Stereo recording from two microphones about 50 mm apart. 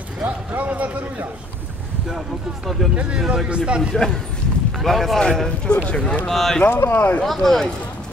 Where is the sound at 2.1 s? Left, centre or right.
Centre.